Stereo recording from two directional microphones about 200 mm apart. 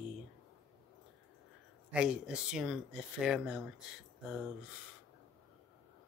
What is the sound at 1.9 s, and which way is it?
Speech, 5° right (ahead or behind).